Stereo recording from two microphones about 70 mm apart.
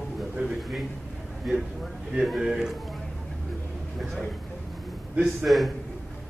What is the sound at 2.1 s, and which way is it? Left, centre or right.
Speech, centre.